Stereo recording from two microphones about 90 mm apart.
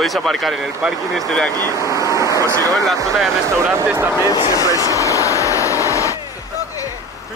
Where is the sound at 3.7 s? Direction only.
20° right (ahead or behind).